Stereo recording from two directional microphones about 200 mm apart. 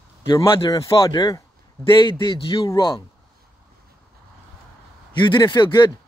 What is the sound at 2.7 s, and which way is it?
Speech, 15° left (ahead or behind).